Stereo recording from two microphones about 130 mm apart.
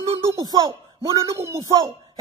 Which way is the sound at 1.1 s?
25° right (ahead or behind).